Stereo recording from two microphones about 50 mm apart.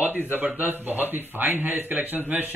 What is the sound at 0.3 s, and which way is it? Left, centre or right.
Speech, right.